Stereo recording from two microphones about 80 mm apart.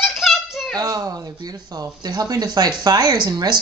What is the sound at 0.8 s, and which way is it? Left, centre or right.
Speech, right.